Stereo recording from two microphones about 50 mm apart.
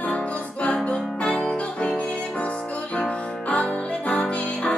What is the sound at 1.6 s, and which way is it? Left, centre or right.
Music, left.